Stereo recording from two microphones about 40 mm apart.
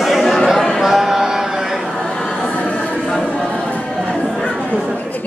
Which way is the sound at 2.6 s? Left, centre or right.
Left.